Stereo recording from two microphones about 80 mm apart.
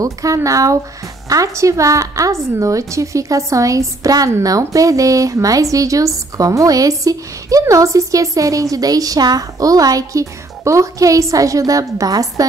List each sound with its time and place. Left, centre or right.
0.0 s a woman's voice: right